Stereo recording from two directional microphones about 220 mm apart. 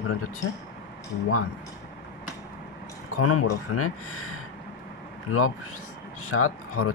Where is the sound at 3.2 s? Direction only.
90° left.